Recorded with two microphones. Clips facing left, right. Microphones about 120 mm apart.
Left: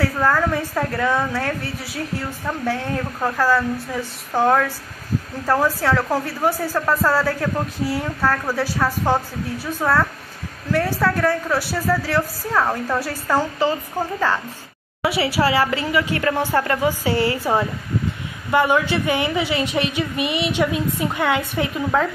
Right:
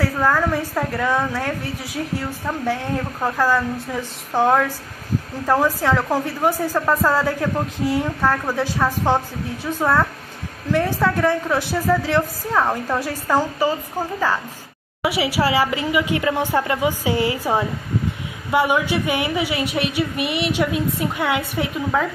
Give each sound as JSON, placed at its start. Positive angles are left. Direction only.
{"t": 0.0, "sound": "speech", "side_deg": -10}
{"t": 12.6, "sound": "a woman's voice", "side_deg": -5}